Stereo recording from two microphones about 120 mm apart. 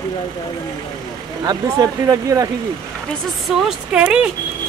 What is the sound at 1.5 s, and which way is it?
Speech, 30° right (ahead or behind).